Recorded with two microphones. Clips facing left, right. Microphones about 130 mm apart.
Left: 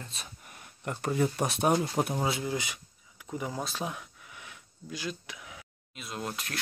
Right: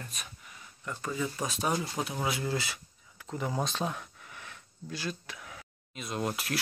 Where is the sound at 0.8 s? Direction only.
60° left (ahead or behind).